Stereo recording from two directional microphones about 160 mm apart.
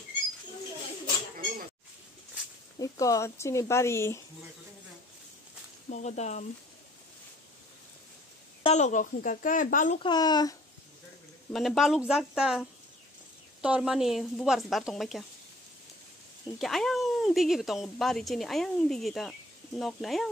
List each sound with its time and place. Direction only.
2.8 s speech: 20° left (ahead or behind)
5.9 s speech: 45° left (ahead or behind)
8.6 s speech: 45° left (ahead or behind)
10.0 s speech: 25° left (ahead or behind)
11.5 s speech: centre (ahead or behind)
16.5 s speech: centre (ahead or behind)